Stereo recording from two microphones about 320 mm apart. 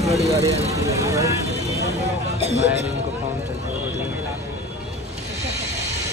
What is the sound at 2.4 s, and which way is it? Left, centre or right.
Speech, centre.